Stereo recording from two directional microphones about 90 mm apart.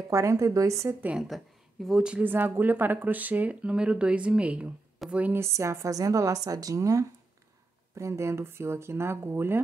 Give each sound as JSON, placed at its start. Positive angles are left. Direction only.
{"t": 0.1, "sound": "a woman's voice", "side_deg": -35}
{"t": 1.0, "sound": "a woman's voice", "side_deg": -5}
{"t": 5.4, "sound": "a woman's voice", "side_deg": -30}